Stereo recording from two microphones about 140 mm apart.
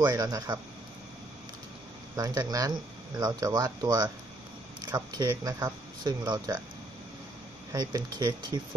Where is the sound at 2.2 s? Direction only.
25° right (ahead or behind).